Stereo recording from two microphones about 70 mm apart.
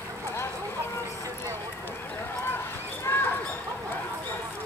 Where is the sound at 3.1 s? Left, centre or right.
Left.